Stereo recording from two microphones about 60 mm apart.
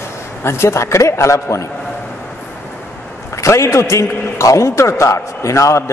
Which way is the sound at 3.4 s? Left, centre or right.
Left.